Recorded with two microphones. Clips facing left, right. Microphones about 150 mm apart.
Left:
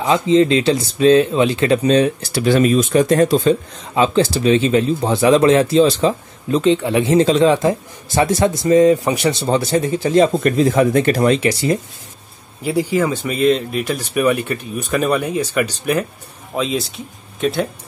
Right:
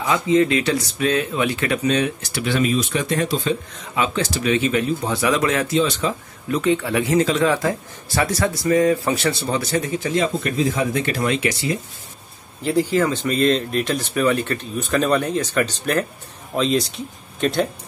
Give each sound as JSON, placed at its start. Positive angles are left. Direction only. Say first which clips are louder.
{"t": 0.0, "sound": "speech", "louder": "left 4 dB", "side_deg": 25}
{"t": 3.9, "sound": "speech", "louder": "left 7 dB", "side_deg": 30}
{"t": 12.6, "sound": "speech", "louder": "left 1 dB", "side_deg": 10}